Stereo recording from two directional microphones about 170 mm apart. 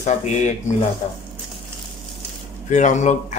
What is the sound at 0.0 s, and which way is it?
Speech, 45° left (ahead or behind).